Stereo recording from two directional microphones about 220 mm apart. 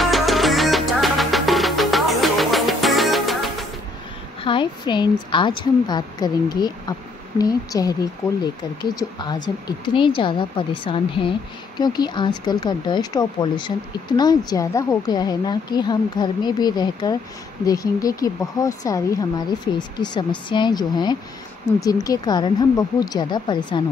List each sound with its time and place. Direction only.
0.0 s music: centre (ahead or behind)
4.4 s speech: 20° left (ahead or behind)
8.9 s a woman's voice: 20° left (ahead or behind)